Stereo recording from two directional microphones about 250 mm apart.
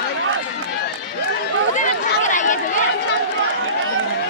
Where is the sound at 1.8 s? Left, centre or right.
Left.